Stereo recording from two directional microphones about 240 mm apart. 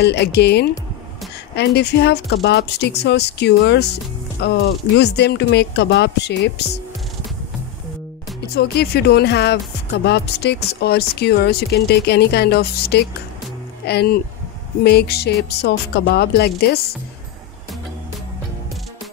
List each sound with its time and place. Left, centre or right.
0.0 s speech: left
8.5 s speech: left